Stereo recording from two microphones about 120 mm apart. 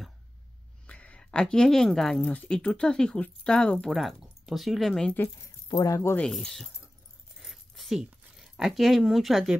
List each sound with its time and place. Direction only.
0.8 s speech: 10° left (ahead or behind)
5.7 s speech: 30° left (ahead or behind)
6.1 s speech: 5° left (ahead or behind)
7.3 s zipper: centre (ahead or behind)